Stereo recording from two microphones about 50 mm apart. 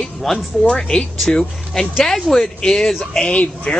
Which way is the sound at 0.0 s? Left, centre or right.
Centre.